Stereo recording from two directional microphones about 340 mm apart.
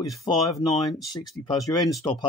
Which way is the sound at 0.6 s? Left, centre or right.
Centre.